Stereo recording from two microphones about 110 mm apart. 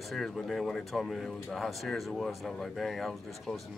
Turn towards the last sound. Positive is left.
turn(degrees=0)  # may be behind; listen again after turning